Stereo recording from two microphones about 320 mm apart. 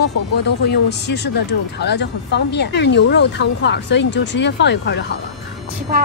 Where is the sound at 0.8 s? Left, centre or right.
Left.